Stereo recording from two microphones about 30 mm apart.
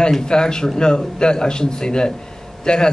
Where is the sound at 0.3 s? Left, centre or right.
Left.